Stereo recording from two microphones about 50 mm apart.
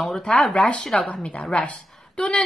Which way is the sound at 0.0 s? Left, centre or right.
Centre.